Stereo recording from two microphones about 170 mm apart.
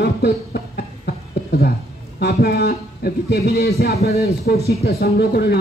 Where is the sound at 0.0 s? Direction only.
70° left (ahead or behind).